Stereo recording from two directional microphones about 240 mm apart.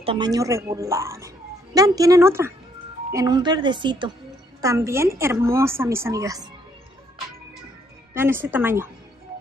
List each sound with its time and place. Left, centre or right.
0.0 s speech: centre
8.1 s speech: centre